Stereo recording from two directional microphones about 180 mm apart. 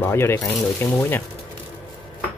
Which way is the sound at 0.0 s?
15° left (ahead or behind).